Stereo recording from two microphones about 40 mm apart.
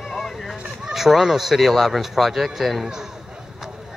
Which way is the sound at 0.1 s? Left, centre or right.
Centre.